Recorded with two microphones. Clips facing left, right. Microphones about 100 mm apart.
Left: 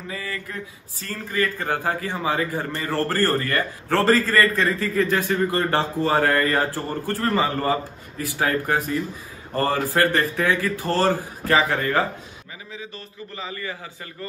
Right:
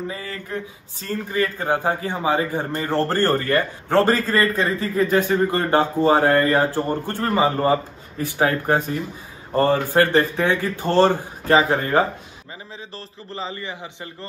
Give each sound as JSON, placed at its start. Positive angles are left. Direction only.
{"t": 0.1, "sound": "speech", "side_deg": -30}